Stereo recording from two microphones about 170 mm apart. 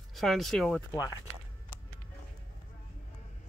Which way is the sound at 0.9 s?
20° left (ahead or behind).